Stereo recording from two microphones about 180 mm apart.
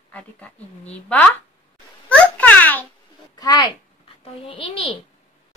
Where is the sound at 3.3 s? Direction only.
20° left (ahead or behind).